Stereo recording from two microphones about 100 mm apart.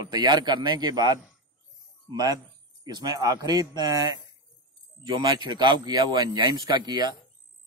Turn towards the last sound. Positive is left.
turn(degrees=-45)  # may be behind; listen again after turning